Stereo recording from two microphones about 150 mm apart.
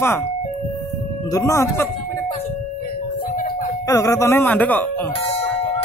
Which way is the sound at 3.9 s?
20° left (ahead or behind).